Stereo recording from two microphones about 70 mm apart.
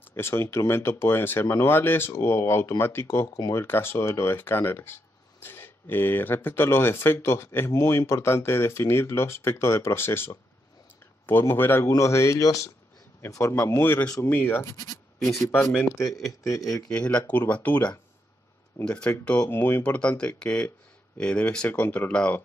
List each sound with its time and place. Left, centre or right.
0.1 s speech: left
7.7 s speech: left
11.9 s speech: left
16.9 s speech: centre
19.5 s speech: left
19.8 s speech: centre